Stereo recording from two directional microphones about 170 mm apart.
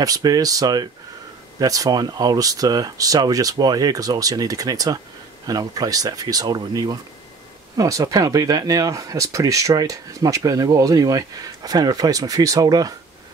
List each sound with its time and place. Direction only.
0.0 s speech: 20° right (ahead or behind)